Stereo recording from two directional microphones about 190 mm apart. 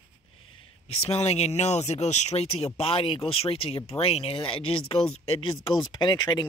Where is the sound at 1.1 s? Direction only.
35° left (ahead or behind).